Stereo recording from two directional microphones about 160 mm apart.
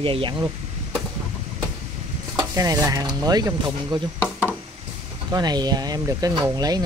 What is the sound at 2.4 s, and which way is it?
Speech, 20° right (ahead or behind).